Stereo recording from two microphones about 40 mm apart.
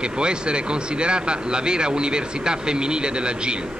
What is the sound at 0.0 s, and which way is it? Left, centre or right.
Speech, right.